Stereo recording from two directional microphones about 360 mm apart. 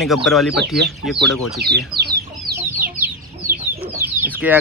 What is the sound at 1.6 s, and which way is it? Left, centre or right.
Speech, right.